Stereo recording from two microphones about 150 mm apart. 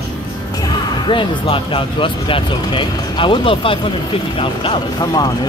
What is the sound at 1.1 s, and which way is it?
Speech, 35° left (ahead or behind).